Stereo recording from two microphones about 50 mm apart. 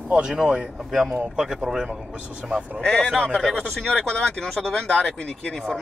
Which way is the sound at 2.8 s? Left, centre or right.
Centre.